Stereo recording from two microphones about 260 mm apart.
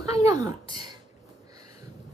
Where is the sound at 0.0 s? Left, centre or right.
Centre.